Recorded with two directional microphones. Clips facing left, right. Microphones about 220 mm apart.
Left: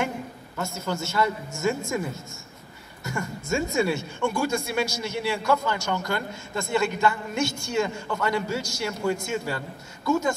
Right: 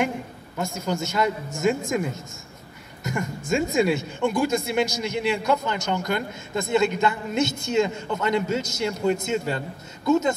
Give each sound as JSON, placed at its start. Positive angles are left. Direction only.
{"t": 0.6, "sound": "a woman's voice", "side_deg": -15}